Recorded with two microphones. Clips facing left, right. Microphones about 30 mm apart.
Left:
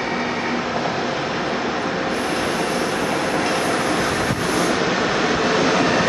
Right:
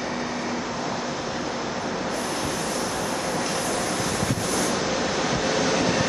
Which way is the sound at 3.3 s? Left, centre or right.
Left.